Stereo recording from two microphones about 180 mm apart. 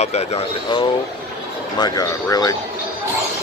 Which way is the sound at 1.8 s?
20° left (ahead or behind).